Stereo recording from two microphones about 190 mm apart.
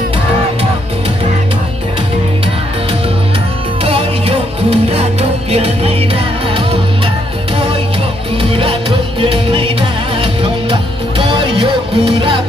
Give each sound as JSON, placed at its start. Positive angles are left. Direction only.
{"t": 3.8, "sound": "music", "side_deg": -30}
{"t": 8.4, "sound": "music", "side_deg": -30}